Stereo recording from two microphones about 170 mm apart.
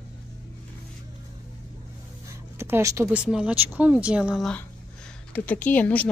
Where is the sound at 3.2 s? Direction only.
5° right (ahead or behind).